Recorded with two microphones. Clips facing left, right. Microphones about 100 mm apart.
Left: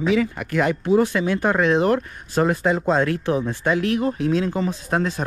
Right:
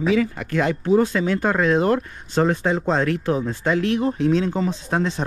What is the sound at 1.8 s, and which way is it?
Speech, 25° right (ahead or behind).